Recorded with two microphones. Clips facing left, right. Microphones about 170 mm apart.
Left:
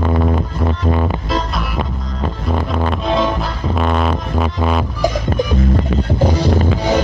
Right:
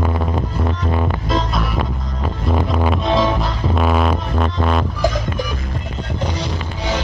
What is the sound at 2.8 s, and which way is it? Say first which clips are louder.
Music: even; 5° right (ahead or behind).